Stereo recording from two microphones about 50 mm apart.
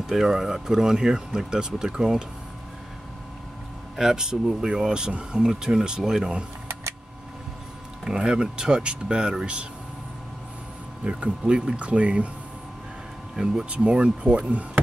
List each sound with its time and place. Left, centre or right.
0.0 s speech: centre
3.9 s speech: centre
6.7 s a sound: right
8.0 s speech: centre
11.1 s speech: centre
13.4 s speech: centre